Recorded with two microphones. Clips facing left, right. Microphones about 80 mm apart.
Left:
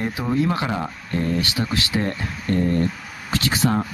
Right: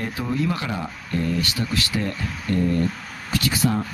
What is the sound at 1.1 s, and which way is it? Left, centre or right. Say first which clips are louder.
Speech: left 1 dB; left.